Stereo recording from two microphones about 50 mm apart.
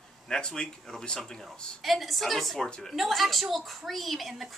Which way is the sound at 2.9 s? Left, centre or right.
Centre.